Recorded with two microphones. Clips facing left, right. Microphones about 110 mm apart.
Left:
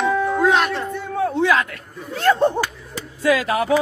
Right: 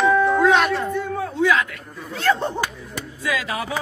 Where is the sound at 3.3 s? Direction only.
50° left (ahead or behind).